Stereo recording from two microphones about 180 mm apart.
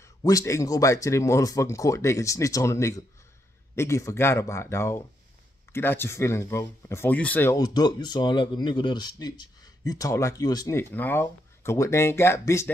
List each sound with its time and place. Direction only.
0.0 s speech: 20° left (ahead or behind)